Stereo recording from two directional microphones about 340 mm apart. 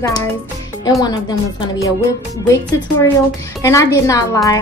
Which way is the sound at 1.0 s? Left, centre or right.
Centre.